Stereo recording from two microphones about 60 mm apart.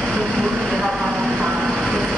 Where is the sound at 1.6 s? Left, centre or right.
Centre.